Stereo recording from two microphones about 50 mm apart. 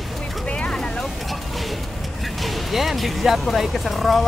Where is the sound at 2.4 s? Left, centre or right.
Centre.